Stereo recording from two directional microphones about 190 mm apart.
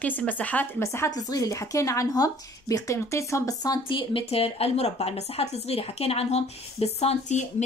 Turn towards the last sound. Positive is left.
turn(degrees=35)  # may be behind; listen again after turning